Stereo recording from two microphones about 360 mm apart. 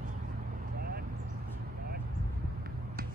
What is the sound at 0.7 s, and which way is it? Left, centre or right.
Vehicle, right.